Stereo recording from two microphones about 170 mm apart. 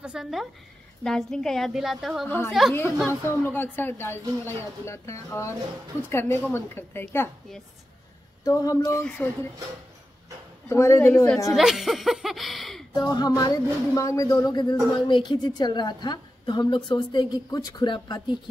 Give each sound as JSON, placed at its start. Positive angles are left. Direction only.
{"t": 0.0, "sound": "a sound", "side_deg": -5}
{"t": 1.0, "sound": "speech", "side_deg": 0}
{"t": 2.2, "sound": "a woman's voice", "side_deg": 10}
{"t": 8.5, "sound": "a woman's voice", "side_deg": 20}
{"t": 8.9, "sound": "a woman's voice", "side_deg": 5}
{"t": 10.7, "sound": "a woman's voice", "side_deg": 15}
{"t": 11.5, "sound": "speech", "side_deg": 0}
{"t": 12.9, "sound": "a woman's voice", "side_deg": 20}